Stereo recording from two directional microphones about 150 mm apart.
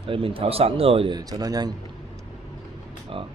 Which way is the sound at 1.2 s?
25° right (ahead or behind).